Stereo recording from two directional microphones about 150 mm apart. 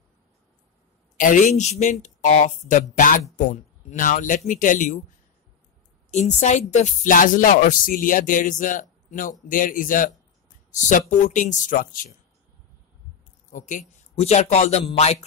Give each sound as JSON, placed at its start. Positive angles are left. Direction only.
{"t": 1.1, "sound": "speech", "side_deg": 60}
{"t": 6.0, "sound": "speech", "side_deg": 50}
{"t": 13.5, "sound": "a man's voice", "side_deg": 60}